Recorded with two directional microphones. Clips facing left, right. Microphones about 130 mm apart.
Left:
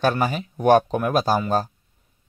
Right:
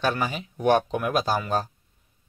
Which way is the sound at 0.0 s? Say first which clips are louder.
Left 5 dB; 45° left (ahead or behind).